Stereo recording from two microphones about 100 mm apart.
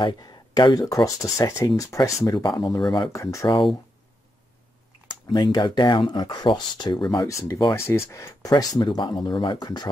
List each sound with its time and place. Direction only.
0.0 s speech: 45° left (ahead or behind)
3.1 s speech: 30° left (ahead or behind)
5.3 s speech: 45° left (ahead or behind)
7.2 s speech: 30° left (ahead or behind)